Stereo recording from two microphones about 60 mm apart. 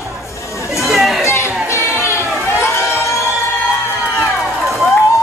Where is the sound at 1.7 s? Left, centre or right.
Left.